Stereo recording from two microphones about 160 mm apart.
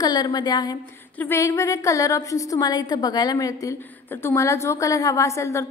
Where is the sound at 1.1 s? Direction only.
15° left (ahead or behind).